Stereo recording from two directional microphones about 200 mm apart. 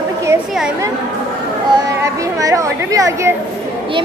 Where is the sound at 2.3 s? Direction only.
15° right (ahead or behind).